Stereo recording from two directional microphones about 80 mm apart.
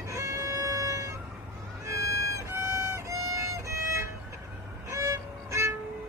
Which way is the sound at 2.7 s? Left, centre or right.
Right.